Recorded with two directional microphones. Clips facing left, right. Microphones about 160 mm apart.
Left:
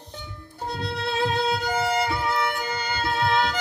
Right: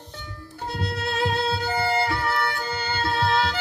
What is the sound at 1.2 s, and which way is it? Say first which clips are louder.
Violin: left 1 dB; centre (ahead or behind).